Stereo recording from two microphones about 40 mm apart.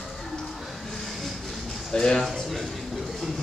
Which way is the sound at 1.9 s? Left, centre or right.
Centre.